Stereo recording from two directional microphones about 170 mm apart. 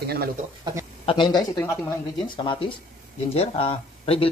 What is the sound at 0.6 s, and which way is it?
Speech, 15° right (ahead or behind).